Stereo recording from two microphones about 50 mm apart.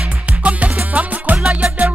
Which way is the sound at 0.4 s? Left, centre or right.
Right.